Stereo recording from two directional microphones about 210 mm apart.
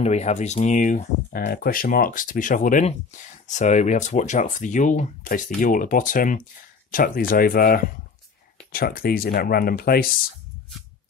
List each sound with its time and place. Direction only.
0.0 s speech: 30° left (ahead or behind)